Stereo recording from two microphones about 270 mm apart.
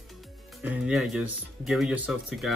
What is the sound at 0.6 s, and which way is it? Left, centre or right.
Speech, centre.